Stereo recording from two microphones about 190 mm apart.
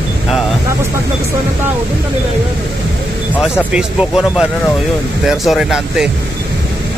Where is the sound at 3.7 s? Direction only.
5° right (ahead or behind).